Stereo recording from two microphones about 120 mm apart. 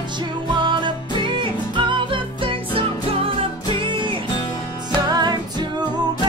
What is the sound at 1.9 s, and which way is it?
Music, 45° right (ahead or behind).